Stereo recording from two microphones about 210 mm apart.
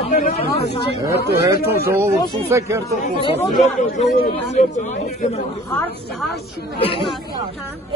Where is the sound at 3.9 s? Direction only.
40° left (ahead or behind).